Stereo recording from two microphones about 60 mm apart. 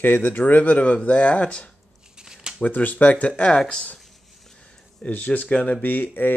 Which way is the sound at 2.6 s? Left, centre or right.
Left.